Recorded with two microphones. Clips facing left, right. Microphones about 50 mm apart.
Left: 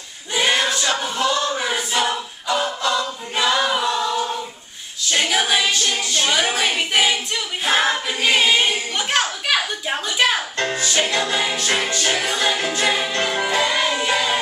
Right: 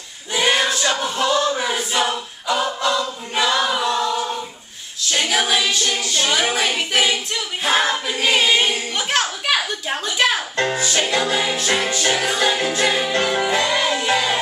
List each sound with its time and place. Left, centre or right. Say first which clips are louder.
0.3 s choir: right 1 dB; centre
1.7 s a capella: even; centre
5.1 s female singing: even; centre
7.6 s choir: even; centre
11.1 s music: right 1 dB; centre